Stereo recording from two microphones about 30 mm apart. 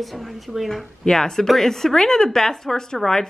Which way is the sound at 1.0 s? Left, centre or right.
Centre.